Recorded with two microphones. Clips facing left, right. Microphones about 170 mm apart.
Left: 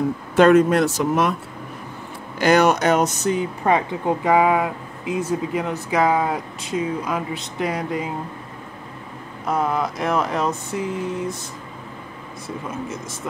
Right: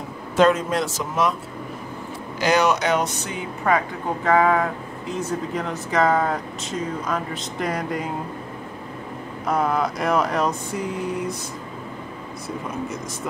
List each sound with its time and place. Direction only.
0.4 s speech: 60° left (ahead or behind)
2.4 s speech: 55° left (ahead or behind); by 3.4 s 40° left (ahead or behind)
3.6 s speech: 25° left (ahead or behind)
4.2 s speech: 15° left (ahead or behind)
9.5 s speech: centre (ahead or behind)